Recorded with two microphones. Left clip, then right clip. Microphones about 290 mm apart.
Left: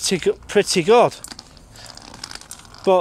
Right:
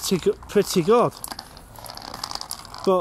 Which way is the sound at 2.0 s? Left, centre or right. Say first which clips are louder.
Right 6 dB; right.